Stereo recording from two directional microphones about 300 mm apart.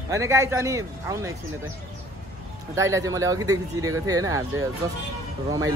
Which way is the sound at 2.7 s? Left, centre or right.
Centre.